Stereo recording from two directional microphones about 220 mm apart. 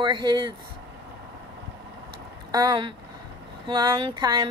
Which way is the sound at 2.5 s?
20° right (ahead or behind).